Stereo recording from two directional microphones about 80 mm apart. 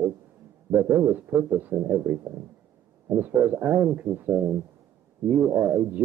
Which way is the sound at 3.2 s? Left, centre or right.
Right.